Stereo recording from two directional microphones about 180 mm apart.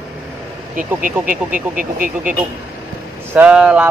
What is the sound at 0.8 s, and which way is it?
Speech, 50° right (ahead or behind).